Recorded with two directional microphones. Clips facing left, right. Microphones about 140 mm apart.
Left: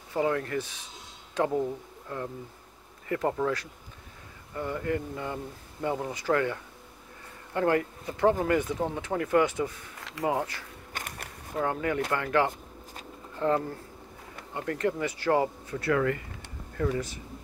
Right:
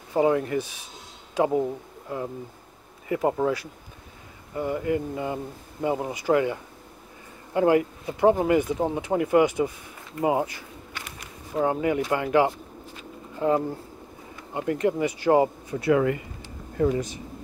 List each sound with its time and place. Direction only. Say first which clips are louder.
0.1 s speech: right 6 dB; 20° right (ahead or behind)
4.6 s speech: right 5 dB; 15° right (ahead or behind)
10.9 s a sound: left 3 dB; 50° left (ahead or behind)
11.5 s speech: right 5 dB; 15° right (ahead or behind)